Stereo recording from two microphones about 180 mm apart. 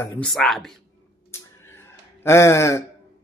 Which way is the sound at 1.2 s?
15° left (ahead or behind).